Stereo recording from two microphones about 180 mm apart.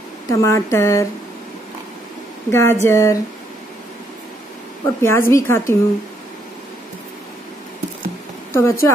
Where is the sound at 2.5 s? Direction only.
15° left (ahead or behind).